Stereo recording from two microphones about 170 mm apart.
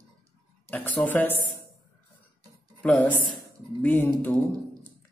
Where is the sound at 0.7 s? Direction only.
10° left (ahead or behind).